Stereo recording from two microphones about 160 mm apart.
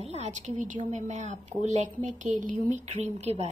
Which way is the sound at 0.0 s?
45° right (ahead or behind).